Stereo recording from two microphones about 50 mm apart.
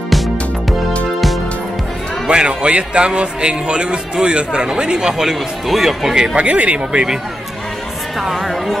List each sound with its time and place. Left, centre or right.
2.2 s a man's voice: right; by 6.1 s centre
6.1 s speech: centre
8.2 s a woman's voice: centre